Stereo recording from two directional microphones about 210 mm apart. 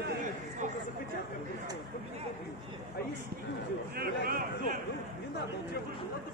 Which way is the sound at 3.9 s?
45° right (ahead or behind).